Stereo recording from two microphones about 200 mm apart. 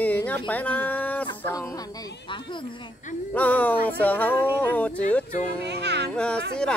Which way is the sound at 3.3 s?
10° left (ahead or behind).